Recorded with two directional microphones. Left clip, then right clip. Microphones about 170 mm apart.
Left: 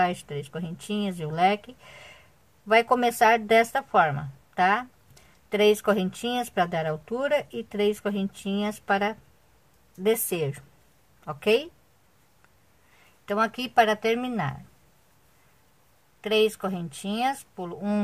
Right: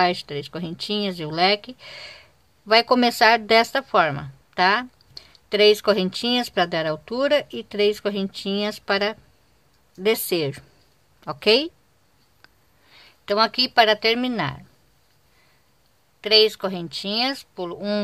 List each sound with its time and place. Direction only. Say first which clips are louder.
0.3 s speech: right 5 dB; 35° right (ahead or behind)
13.3 s speech: right 6 dB; 30° right (ahead or behind)
16.2 s speech: right 6 dB; 30° right (ahead or behind)